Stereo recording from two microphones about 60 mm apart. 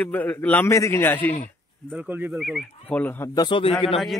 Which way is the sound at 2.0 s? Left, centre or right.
Right.